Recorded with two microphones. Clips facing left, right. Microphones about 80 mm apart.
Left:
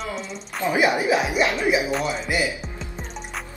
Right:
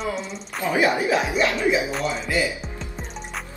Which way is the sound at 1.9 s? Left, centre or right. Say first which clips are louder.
Even; centre.